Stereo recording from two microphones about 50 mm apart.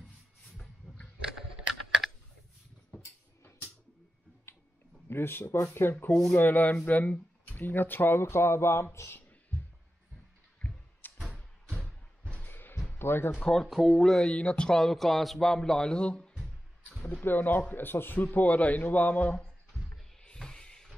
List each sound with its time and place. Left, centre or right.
5.1 s speech: left
5.8 s speech: left
6.3 s speech: left
11.1 s a sound: centre
12.4 s music: left
13.0 s speech: left
13.7 s speech: centre
13.9 s a man's voice: centre
14.8 s a man's voice: centre
17.2 s speech: left
18.2 s speech: left
20.2 s a sound: centre